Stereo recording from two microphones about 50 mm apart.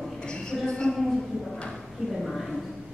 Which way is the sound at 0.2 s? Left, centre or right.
Centre.